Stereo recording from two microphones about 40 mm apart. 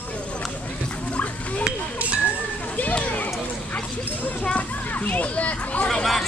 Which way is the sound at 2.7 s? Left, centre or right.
Left.